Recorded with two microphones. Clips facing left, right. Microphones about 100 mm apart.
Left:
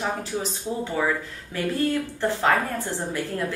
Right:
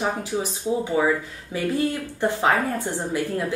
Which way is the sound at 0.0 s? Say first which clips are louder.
Right 2 dB; 15° right (ahead or behind).